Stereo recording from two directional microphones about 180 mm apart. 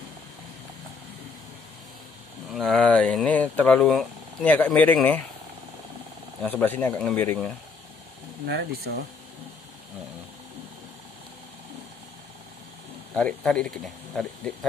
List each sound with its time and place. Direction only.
2.5 s speech: centre (ahead or behind)
6.4 s speech: 10° left (ahead or behind)
8.5 s speech: 65° right (ahead or behind)
13.1 s speech: 5° left (ahead or behind)